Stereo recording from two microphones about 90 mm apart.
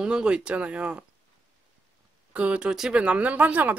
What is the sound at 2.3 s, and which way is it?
Speech, 15° right (ahead or behind).